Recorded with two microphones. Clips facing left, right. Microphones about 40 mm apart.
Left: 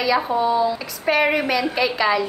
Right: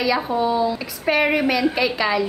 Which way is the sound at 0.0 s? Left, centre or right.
Centre.